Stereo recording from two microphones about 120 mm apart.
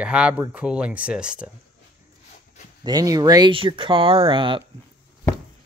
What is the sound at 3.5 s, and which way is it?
Speech, 45° right (ahead or behind).